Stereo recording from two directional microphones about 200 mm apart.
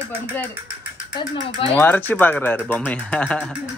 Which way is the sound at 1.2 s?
25° left (ahead or behind).